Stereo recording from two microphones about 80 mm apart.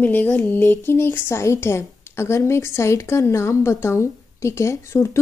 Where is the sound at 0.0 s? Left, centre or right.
Left.